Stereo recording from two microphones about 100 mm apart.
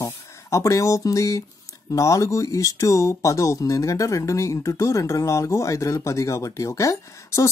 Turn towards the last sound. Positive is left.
turn(degrees=30)  # may be behind; listen again after turning